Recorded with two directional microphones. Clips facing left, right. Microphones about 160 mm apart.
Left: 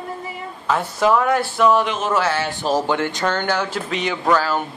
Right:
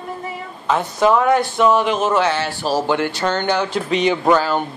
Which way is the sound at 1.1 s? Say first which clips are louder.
Right 2 dB; 20° right (ahead or behind).